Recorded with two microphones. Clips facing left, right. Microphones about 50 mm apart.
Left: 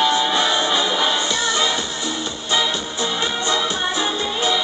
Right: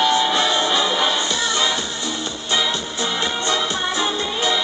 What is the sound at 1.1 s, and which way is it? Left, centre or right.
Music, centre.